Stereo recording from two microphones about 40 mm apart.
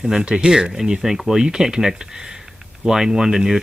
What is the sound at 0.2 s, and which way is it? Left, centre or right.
Speech, right.